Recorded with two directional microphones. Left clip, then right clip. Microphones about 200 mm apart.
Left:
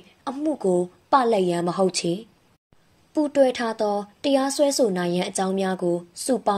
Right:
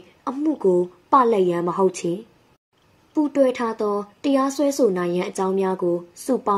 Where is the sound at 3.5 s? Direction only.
15° left (ahead or behind).